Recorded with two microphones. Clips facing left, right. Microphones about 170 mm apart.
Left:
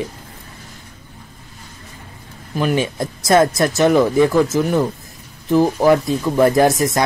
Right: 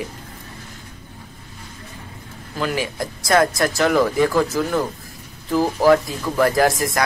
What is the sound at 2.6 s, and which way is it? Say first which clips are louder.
Speech: left 5 dB; 25° left (ahead or behind).